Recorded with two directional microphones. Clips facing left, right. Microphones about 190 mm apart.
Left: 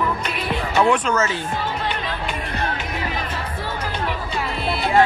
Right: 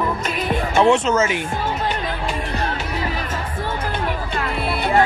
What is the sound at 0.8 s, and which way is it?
Speech, 25° right (ahead or behind).